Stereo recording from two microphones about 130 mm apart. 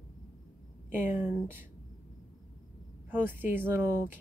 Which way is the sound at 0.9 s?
15° right (ahead or behind).